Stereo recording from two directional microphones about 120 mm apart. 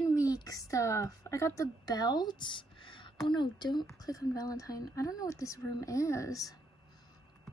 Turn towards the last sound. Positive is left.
turn(degrees=30)  # may be behind; listen again after turning